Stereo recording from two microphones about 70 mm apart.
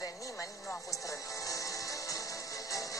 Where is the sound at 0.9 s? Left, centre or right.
Left.